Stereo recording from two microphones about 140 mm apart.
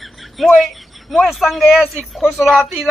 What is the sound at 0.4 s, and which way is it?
Speech, centre (ahead or behind).